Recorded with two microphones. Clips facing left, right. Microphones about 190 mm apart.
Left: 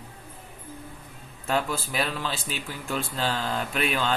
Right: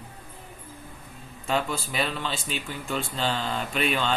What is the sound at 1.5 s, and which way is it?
Speech, 5° left (ahead or behind).